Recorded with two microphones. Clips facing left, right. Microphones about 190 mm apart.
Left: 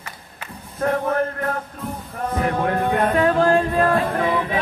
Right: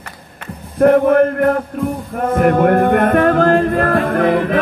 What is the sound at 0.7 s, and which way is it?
Music, 65° right (ahead or behind).